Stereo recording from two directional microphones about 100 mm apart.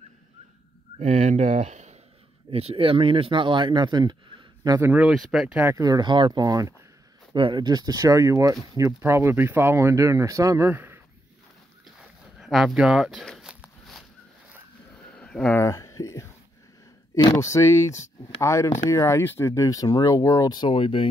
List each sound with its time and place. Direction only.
2.5 s speech: 75° right (ahead or behind); by 4.2 s 50° right (ahead or behind)
4.6 s speech: 30° right (ahead or behind)
5.1 s speech: 5° right (ahead or behind)
5.8 s speech: 35° right (ahead or behind)
6.0 s speech: 50° right (ahead or behind)
7.3 s speech: 55° right (ahead or behind); by 10.6 s 35° right (ahead or behind)
10.6 s speech: 20° right (ahead or behind)
12.0 s a sound: centre (ahead or behind)
13.4 s walk: 5° right (ahead or behind)
15.0 s a sound: 10° left (ahead or behind)
15.6 s speech: 30° left (ahead or behind)
17.4 s speech: 30° left (ahead or behind); by 21.1 s 60° left (ahead or behind)